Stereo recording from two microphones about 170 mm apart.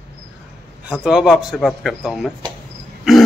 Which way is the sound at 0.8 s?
5° right (ahead or behind).